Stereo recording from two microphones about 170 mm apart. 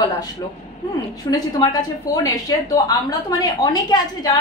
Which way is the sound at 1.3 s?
25° left (ahead or behind).